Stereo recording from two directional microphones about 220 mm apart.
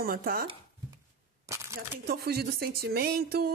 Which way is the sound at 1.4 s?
15° right (ahead or behind).